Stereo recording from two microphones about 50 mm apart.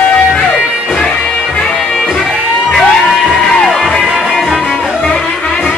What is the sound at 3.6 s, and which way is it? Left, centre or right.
Music, centre.